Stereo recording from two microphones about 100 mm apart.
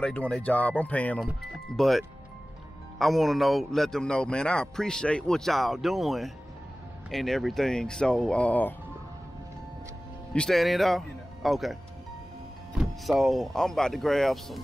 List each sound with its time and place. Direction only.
0.0 s speech: 10° left (ahead or behind)
1.4 s a man's voice: centre (ahead or behind)
10.3 s a man's voice: 5° left (ahead or behind)